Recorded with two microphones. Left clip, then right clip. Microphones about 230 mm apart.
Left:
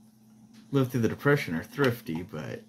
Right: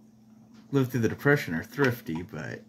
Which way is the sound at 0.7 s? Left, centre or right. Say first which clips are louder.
Even; centre.